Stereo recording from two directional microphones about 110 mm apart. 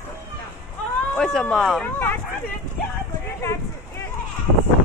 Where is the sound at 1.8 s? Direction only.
15° left (ahead or behind).